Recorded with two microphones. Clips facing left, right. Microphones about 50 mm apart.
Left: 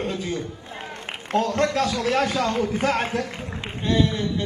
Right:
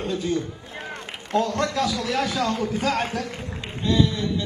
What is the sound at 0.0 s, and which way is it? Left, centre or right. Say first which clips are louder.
A man's voice: right 2 dB; left.